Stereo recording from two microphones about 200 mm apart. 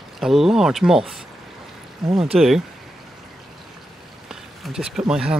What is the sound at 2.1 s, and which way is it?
Speech, 30° right (ahead or behind).